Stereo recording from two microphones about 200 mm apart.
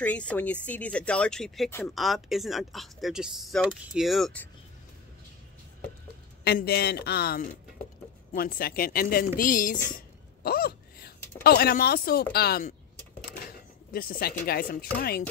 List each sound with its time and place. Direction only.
0.0 s speech: 5° left (ahead or behind)
2.0 s speech: centre (ahead or behind)
6.4 s speech: 50° left (ahead or behind)
9.9 s a sound: 50° left (ahead or behind)
11.4 s speech: 50° left (ahead or behind)